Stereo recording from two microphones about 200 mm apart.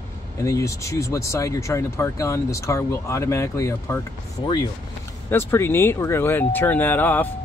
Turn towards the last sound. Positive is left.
turn(degrees=10)  # may be behind; listen again after turning